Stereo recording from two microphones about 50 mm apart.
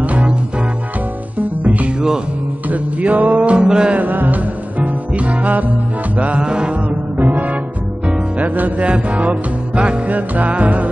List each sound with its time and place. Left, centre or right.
0.0 s music: right
1.6 s music: right; by 3.9 s centre
3.9 s music: right
6.4 s mantra: centre
6.7 s music: right